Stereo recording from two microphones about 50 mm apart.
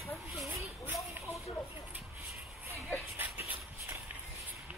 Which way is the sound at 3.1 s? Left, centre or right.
Right.